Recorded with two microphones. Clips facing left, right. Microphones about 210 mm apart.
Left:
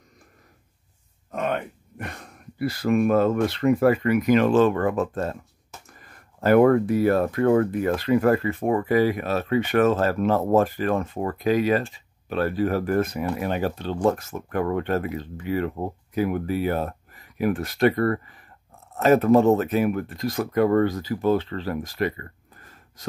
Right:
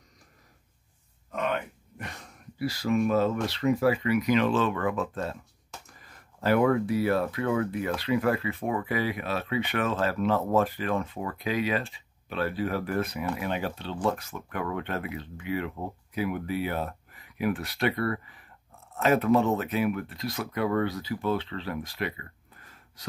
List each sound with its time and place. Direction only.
1.3 s speech: 45° left (ahead or behind)
6.4 s speech: 50° left (ahead or behind)